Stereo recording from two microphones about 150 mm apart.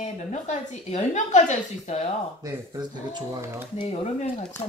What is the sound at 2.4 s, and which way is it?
Speech, 25° right (ahead or behind).